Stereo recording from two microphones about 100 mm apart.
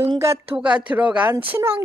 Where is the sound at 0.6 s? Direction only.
10° right (ahead or behind).